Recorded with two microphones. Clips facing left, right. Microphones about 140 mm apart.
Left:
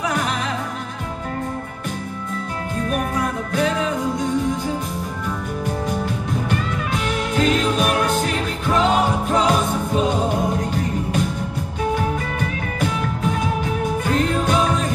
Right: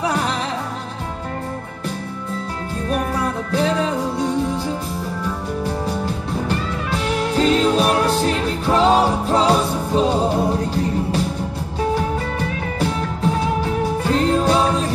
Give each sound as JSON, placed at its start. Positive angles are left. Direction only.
{"t": 0.0, "sound": "music", "side_deg": -30}
{"t": 2.9, "sound": "music", "side_deg": -30}
{"t": 6.5, "sound": "music", "side_deg": -35}